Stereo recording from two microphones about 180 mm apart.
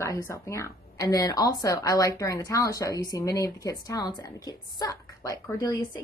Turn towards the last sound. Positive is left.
turn(degrees=20)  # may be behind; listen again after turning